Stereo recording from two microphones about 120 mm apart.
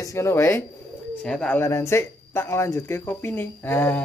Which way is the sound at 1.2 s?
5° left (ahead or behind).